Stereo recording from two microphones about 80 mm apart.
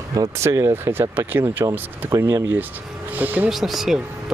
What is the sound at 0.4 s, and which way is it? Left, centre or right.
Speech, right.